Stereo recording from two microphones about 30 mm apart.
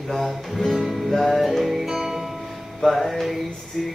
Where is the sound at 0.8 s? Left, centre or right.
Centre.